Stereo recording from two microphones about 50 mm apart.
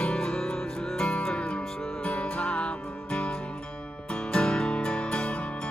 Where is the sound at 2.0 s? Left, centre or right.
Left.